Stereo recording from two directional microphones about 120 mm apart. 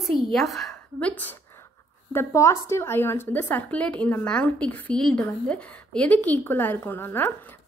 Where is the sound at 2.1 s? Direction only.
25° left (ahead or behind).